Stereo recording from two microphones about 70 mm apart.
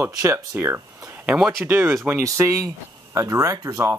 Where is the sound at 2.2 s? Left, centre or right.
Right.